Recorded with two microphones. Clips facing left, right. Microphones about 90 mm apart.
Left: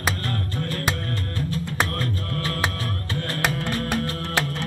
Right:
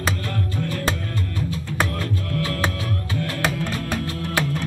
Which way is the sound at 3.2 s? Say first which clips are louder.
Right 1 dB; 50° left (ahead or behind).